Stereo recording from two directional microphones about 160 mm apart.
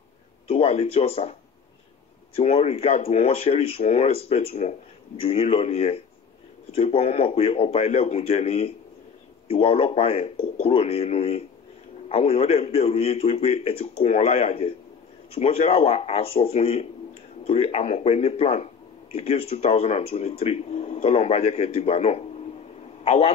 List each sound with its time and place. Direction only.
0.5 s speech: 40° left (ahead or behind)
2.3 s a man's voice: 40° left (ahead or behind)